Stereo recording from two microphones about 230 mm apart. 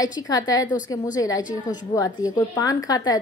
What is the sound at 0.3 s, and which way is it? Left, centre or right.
A woman's voice, centre.